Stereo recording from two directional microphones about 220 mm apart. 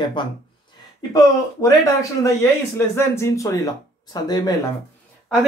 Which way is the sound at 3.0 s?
15° left (ahead or behind).